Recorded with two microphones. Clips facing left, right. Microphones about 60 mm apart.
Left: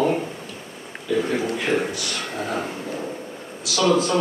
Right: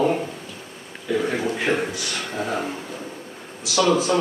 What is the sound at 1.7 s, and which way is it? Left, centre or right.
Speech, centre.